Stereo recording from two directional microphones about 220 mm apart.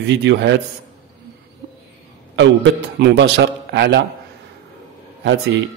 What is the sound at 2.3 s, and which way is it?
A man's voice, 55° right (ahead or behind).